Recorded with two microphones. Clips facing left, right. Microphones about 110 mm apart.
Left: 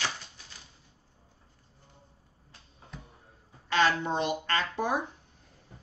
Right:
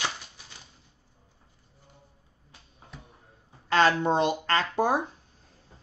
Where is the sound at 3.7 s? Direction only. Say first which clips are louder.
Right 4 dB; 40° right (ahead or behind).